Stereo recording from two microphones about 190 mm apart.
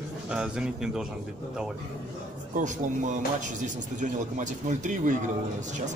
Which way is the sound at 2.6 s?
40° right (ahead or behind).